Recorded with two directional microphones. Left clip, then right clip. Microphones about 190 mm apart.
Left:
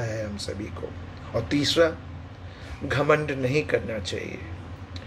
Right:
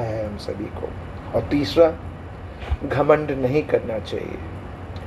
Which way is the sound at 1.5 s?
15° left (ahead or behind).